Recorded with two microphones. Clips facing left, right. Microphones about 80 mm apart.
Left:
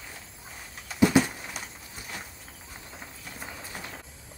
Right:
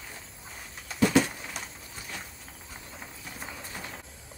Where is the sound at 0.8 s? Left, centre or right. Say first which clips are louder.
Left 2 dB; centre.